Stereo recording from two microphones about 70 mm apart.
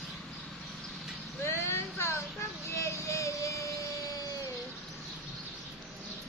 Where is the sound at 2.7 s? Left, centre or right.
Left.